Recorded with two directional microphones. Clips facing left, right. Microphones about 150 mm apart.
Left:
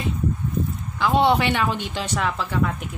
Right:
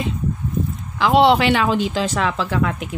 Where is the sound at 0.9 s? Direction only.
90° right.